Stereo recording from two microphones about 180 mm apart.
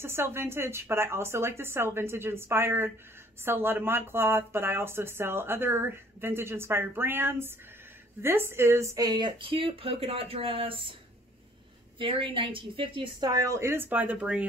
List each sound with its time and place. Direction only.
0.0 s speech: 15° right (ahead or behind); by 11.0 s 30° right (ahead or behind)
12.0 s speech: 30° right (ahead or behind); by 14.4 s 5° right (ahead or behind)